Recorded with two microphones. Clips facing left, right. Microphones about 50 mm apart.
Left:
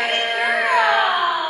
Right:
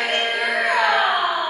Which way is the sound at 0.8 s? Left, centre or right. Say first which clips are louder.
Left 2 dB; centre.